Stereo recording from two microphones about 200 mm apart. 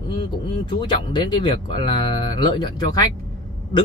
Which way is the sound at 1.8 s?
25° left (ahead or behind).